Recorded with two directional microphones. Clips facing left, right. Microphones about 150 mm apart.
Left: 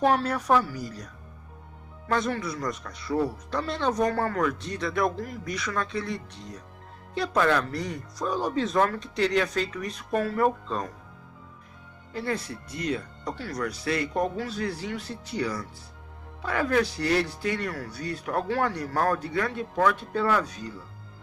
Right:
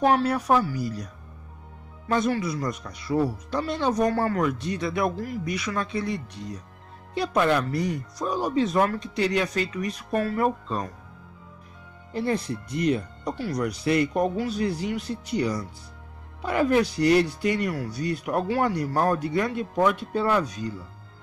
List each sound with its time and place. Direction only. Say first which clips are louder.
0.0 s speech: right 2 dB; 5° right (ahead or behind)
2.1 s speech: right 4 dB; 10° right (ahead or behind)
12.1 s speech: right 4 dB; 20° right (ahead or behind)